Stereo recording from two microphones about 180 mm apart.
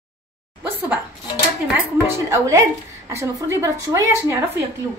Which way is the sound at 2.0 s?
15° right (ahead or behind).